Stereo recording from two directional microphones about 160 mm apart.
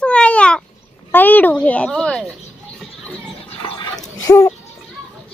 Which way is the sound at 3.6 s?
30° left (ahead or behind).